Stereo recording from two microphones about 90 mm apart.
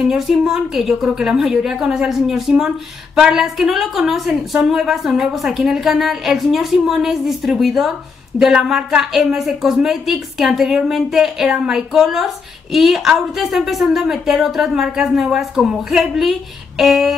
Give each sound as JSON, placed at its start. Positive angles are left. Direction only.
{"t": 0.1, "sound": "a woman's voice", "side_deg": -5}